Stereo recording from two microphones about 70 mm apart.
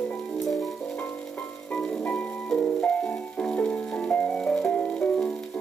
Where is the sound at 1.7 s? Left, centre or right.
Centre.